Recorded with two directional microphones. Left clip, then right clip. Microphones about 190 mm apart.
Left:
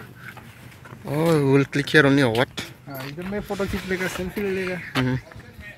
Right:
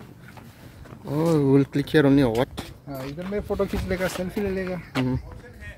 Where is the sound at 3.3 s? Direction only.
45° right (ahead or behind).